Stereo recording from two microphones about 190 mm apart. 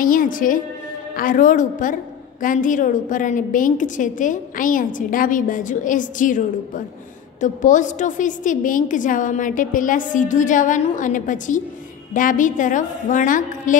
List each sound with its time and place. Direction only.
0.0 s a woman's voice: 45° left (ahead or behind)